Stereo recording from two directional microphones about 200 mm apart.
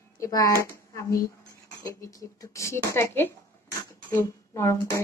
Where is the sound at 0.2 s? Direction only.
15° left (ahead or behind).